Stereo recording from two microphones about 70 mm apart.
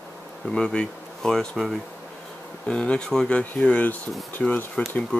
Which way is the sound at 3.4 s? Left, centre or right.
Left.